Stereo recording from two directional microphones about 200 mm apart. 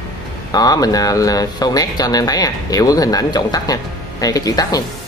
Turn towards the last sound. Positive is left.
turn(degrees=20)  # may be behind; listen again after turning